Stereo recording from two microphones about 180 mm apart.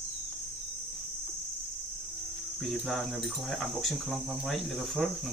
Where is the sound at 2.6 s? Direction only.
Centre (ahead or behind).